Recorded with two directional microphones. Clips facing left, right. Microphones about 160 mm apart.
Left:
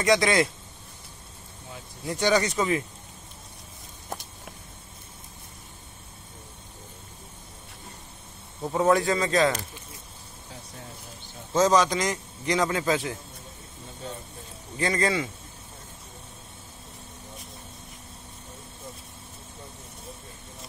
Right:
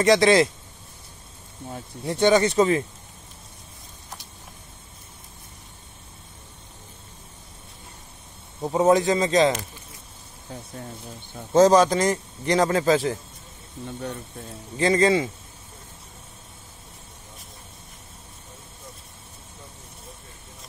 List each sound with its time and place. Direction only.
0.0 s speech: 30° right (ahead or behind)
2.0 s speech: 25° right (ahead or behind)
8.6 s speech: 20° right (ahead or behind)
11.5 s a man's voice: 35° right (ahead or behind)
14.8 s speech: 25° right (ahead or behind)